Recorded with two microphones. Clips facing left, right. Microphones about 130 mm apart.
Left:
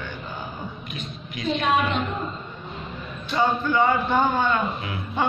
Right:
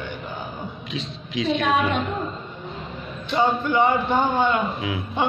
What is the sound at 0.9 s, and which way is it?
A woman's voice, 90° right.